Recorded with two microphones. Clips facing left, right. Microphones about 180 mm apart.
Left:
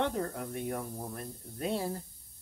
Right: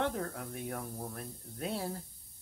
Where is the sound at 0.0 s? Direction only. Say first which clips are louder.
Left 2 dB; 5° left (ahead or behind).